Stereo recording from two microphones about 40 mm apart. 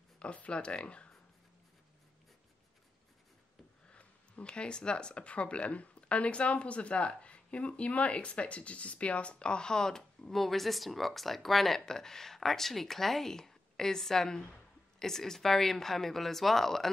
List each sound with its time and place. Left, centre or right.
0.2 s speech: left
3.9 s a woman's voice: left; by 16.9 s centre